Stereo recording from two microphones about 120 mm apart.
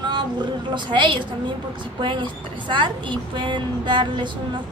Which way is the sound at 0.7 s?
40° right (ahead or behind).